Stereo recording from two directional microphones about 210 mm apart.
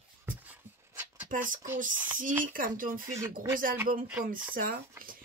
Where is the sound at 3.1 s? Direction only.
15° right (ahead or behind).